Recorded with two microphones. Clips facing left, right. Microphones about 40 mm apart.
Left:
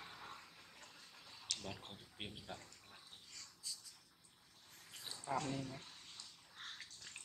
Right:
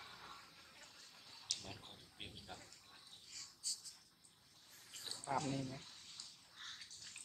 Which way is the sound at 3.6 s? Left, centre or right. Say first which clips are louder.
Right 2 dB; centre.